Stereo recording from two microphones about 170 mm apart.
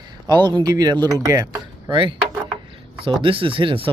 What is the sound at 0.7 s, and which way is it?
Speech, 20° right (ahead or behind).